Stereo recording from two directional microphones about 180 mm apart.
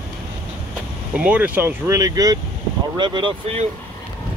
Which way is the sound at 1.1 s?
5° right (ahead or behind).